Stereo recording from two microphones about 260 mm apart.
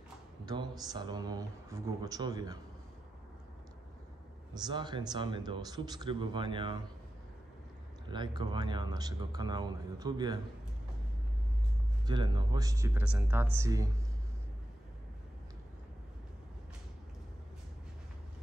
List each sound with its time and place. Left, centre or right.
0.5 s speech: centre
4.6 s speech: centre
8.1 s speech: centre
12.1 s speech: centre